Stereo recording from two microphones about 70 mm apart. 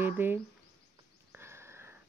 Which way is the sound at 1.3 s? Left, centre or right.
Right.